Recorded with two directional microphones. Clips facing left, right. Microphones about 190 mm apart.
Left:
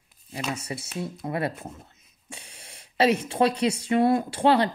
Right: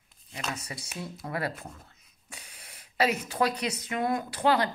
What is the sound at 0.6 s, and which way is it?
Speech, 25° left (ahead or behind).